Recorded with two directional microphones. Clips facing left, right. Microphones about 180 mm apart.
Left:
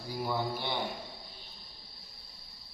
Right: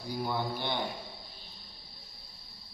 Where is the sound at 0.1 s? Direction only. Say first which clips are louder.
Even; centre (ahead or behind).